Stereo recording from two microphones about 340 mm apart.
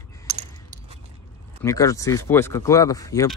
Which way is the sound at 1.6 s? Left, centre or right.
Centre.